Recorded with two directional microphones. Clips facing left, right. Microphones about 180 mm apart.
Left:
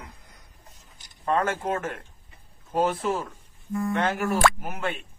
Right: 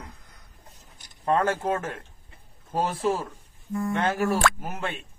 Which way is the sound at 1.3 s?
30° right (ahead or behind).